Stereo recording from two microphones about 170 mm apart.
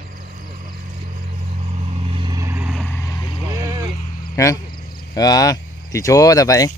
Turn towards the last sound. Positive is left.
turn(degrees=20)  # may be behind; listen again after turning